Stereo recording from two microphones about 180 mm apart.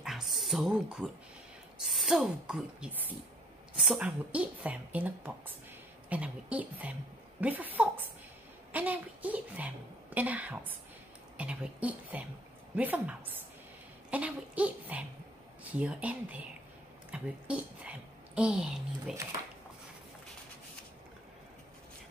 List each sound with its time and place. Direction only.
0.0 s music: centre (ahead or behind)
1.8 s a woman's voice: centre (ahead or behind)